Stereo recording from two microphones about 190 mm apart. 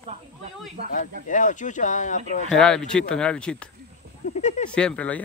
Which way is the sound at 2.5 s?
5° left (ahead or behind).